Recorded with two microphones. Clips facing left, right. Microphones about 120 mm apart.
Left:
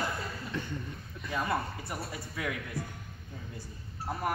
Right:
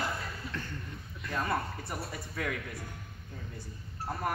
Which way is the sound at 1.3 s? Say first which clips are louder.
Left 1 dB; 5° left (ahead or behind).